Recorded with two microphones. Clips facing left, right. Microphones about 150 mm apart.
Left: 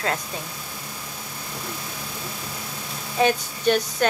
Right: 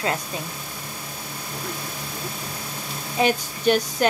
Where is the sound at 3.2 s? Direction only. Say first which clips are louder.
Left 1 dB; 10° right (ahead or behind).